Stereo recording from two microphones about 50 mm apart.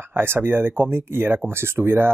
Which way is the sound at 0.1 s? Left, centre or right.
Right.